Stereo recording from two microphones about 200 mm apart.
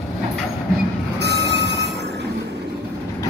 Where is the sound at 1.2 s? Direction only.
60° right (ahead or behind).